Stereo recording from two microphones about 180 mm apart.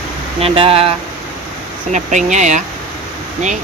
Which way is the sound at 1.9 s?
40° right (ahead or behind).